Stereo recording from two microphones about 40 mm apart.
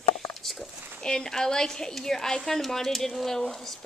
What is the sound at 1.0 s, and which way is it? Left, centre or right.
A woman's voice, centre.